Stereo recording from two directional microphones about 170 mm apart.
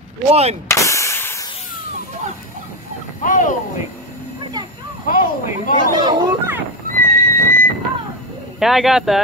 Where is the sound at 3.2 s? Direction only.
50° left (ahead or behind).